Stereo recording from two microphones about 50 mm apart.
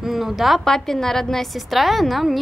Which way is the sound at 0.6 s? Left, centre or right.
Centre.